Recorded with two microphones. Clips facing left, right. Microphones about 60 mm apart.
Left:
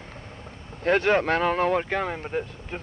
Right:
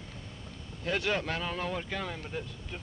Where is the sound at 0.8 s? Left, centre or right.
Left.